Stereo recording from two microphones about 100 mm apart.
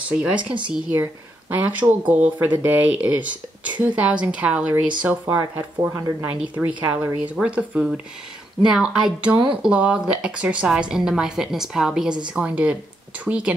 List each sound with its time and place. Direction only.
0.1 s speech: 10° right (ahead or behind)
5.8 s speech: 30° right (ahead or behind)
6.4 s speech: 15° right (ahead or behind)